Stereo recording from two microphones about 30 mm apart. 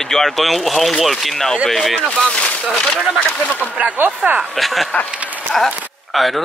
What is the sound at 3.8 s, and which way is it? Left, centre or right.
Speech, right.